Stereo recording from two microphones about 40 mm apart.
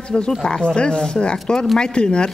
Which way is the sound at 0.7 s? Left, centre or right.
Left.